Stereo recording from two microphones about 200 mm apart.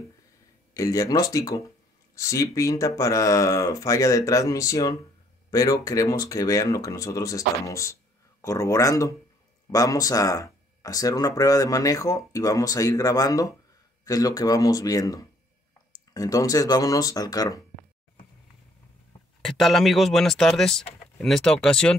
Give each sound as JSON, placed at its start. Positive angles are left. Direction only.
{"t": 0.7, "sound": "speech", "side_deg": 15}
{"t": 19.4, "sound": "speech", "side_deg": 0}